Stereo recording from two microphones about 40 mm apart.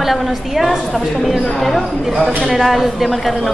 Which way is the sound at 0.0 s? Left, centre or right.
Centre.